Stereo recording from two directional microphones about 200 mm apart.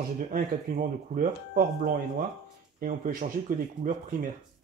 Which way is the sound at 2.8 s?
45° right (ahead or behind).